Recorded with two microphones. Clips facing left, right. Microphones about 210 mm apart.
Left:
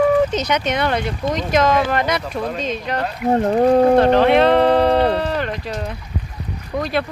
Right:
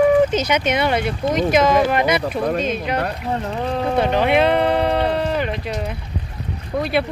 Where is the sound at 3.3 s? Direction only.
45° left (ahead or behind).